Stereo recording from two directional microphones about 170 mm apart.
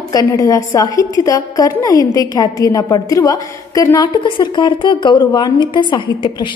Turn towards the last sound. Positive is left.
turn(degrees=25)  # may be behind; listen again after turning